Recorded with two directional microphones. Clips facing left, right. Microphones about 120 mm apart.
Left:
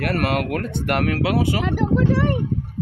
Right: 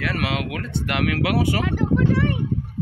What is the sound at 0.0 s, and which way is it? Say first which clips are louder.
Speech: left 4 dB; 50° left (ahead or behind).